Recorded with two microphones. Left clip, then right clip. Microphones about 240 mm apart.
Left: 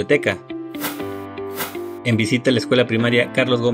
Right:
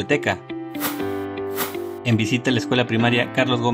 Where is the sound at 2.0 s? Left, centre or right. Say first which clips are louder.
Left 3 dB; centre.